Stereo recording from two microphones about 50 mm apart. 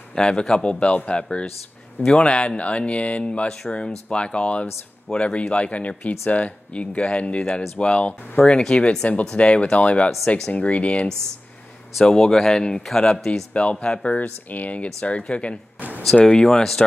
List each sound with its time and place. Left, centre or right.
0.1 s speech: centre
12.0 s speech: centre
13.5 s speech: left
14.2 s speech: left; by 16.8 s centre